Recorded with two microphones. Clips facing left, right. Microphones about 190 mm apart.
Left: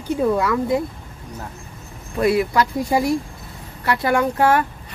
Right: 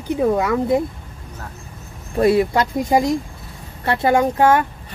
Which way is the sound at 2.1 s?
30° right (ahead or behind).